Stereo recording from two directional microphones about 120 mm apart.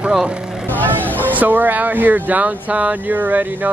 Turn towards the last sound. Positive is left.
turn(degrees=-15)  # may be behind; listen again after turning